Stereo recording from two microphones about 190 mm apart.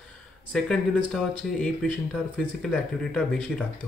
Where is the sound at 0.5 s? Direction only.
Centre (ahead or behind).